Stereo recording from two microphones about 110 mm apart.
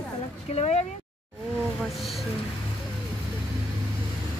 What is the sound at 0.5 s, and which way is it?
Speech, 75° left (ahead or behind).